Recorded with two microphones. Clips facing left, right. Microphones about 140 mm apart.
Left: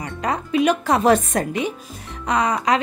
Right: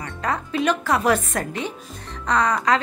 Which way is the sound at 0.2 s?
15° left (ahead or behind).